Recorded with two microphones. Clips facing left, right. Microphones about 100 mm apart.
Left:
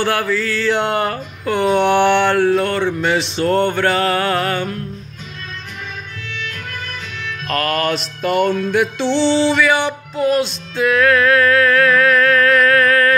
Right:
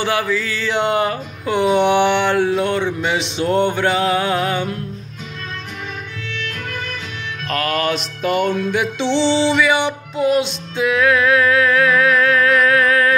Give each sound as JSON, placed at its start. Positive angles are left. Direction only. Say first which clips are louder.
{"t": 0.0, "sound": "a sound", "louder": "left 1 dB", "side_deg": -15}
{"t": 7.4, "sound": "music", "louder": "left 1 dB", "side_deg": -5}
{"t": 8.9, "sound": "music", "louder": "left 1 dB", "side_deg": -20}